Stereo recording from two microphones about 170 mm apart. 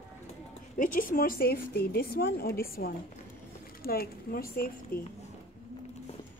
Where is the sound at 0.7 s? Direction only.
55° left (ahead or behind).